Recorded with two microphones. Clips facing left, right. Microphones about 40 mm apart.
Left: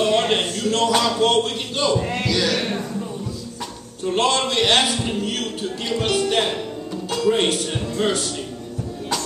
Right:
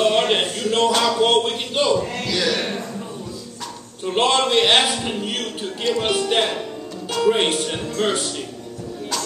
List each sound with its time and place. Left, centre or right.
0.0 s a man's voice: centre
2.0 s a man's voice: left
2.2 s speech: centre
4.0 s a man's voice: centre